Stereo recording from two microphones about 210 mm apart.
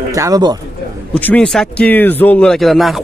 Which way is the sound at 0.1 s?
15° right (ahead or behind).